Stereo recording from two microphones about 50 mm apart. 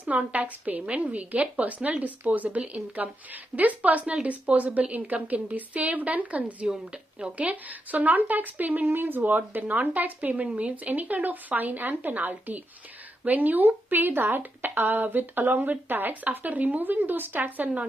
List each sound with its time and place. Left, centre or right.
0.0 s speech: right
6.9 s speech: right